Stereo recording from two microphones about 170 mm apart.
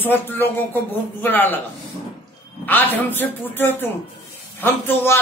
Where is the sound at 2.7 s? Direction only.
10° left (ahead or behind).